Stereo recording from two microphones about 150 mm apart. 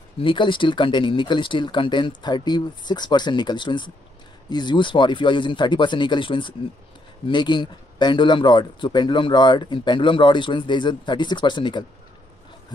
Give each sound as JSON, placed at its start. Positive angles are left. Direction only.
{"t": 0.2, "sound": "speech", "side_deg": 35}